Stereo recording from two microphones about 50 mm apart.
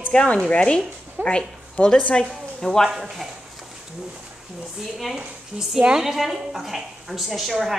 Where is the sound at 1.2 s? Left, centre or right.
Right.